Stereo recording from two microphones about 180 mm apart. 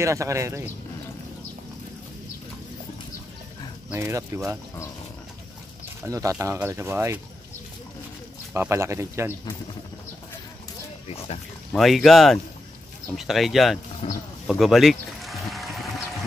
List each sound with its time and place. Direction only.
0.0 s speech: 15° right (ahead or behind)
3.9 s speech: 15° right (ahead or behind)
6.0 s speech: 15° right (ahead or behind)
8.5 s speech: 15° right (ahead or behind)
11.1 s speech: 35° left (ahead or behind)
11.7 s speech: centre (ahead or behind)
14.0 s speech: 35° left (ahead or behind)
14.5 s pour: centre (ahead or behind)